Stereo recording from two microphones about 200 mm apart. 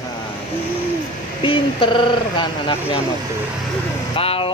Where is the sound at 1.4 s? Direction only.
25° left (ahead or behind).